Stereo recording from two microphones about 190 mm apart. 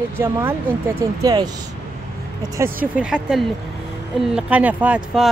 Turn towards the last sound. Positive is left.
turn(degrees=-5)  # may be behind; listen again after turning